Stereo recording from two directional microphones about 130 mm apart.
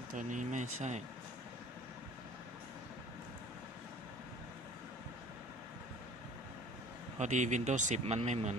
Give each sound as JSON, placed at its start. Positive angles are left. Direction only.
{"t": 0.1, "sound": "speech", "side_deg": -75}
{"t": 7.2, "sound": "speech", "side_deg": -65}